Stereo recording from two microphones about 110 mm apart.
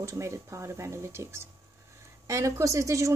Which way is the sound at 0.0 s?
25° right (ahead or behind).